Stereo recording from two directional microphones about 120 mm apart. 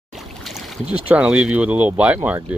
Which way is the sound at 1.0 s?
10° right (ahead or behind).